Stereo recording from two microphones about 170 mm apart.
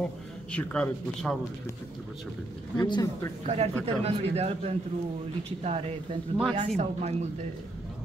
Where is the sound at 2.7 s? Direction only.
25° left (ahead or behind).